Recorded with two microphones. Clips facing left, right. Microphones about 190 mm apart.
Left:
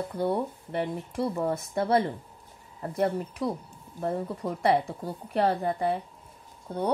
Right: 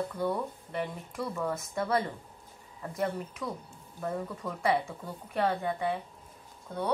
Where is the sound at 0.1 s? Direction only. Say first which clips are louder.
Left 4 dB; 30° left (ahead or behind).